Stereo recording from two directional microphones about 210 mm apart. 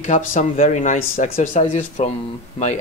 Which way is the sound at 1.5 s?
30° left (ahead or behind).